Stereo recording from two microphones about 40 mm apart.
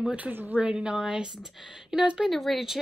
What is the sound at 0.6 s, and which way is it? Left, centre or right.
Speech, right.